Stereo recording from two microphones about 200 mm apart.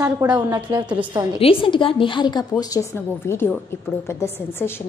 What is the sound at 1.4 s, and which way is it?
A woman's voice, 25° left (ahead or behind).